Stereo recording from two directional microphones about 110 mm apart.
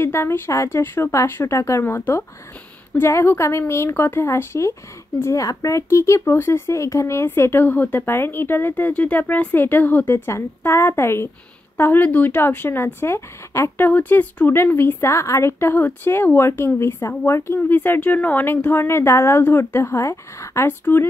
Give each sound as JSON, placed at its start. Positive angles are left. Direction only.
{"t": 0.0, "sound": "speech", "side_deg": 25}